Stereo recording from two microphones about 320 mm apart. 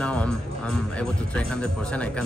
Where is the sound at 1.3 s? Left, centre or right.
Centre.